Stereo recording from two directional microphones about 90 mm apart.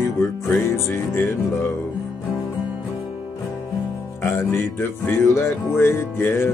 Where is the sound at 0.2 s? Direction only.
30° left (ahead or behind).